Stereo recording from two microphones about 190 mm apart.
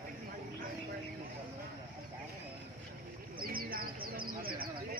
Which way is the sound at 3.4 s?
50° right (ahead or behind).